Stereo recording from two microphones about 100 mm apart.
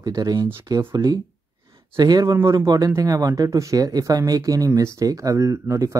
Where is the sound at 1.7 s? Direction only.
55° right (ahead or behind).